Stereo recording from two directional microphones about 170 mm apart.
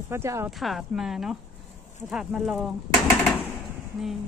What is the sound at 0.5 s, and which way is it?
Speech, centre (ahead or behind).